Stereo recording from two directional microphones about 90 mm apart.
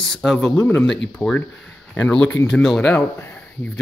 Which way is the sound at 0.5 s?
25° left (ahead or behind).